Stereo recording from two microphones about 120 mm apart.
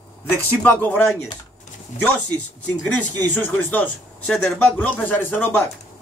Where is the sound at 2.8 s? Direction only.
10° left (ahead or behind).